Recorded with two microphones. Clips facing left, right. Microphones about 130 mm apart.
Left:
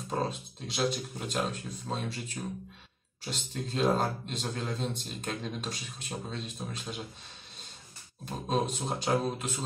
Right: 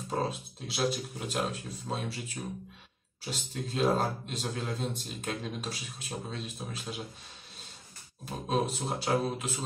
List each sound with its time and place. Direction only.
0.1 s speech: 5° right (ahead or behind)
8.3 s speech: 5° right (ahead or behind)